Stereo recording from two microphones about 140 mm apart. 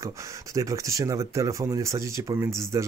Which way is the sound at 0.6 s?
25° right (ahead or behind).